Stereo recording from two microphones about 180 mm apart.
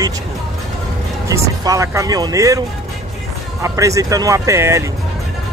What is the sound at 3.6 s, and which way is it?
Speech, 15° right (ahead or behind).